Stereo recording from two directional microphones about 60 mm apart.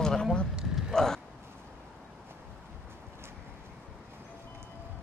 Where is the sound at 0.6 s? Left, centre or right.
Centre.